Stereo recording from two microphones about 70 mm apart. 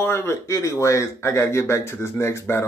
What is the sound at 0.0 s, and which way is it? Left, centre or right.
Speech, left.